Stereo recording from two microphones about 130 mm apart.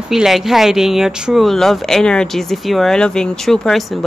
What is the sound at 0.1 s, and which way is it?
Speech, 5° right (ahead or behind).